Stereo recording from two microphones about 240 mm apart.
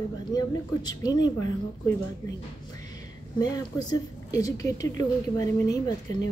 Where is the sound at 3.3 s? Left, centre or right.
Centre.